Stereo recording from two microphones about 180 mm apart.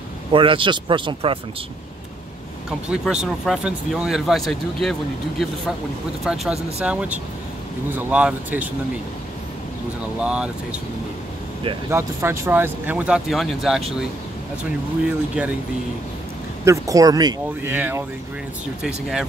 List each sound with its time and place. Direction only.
0.3 s speech: 30° right (ahead or behind)
2.9 s speech: 5° right (ahead or behind)
6.2 s speech: centre (ahead or behind)
10.2 s speech: 5° right (ahead or behind)
11.9 s speech: 15° right (ahead or behind)
15.0 s speech: 10° right (ahead or behind)
16.6 s speech: 15° right (ahead or behind)
17.6 s speech: 10° right (ahead or behind)